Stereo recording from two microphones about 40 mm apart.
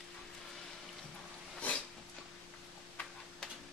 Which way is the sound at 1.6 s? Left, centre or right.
Left.